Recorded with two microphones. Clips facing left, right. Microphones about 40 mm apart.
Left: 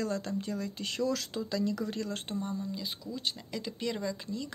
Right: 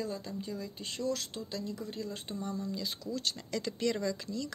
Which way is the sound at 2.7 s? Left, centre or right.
Centre.